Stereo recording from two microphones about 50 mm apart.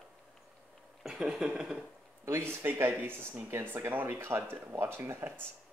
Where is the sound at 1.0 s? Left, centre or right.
Centre.